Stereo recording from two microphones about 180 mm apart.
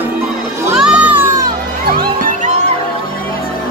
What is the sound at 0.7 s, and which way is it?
Music, 5° right (ahead or behind).